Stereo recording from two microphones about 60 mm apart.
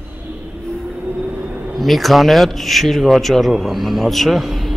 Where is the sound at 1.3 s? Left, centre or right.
Right.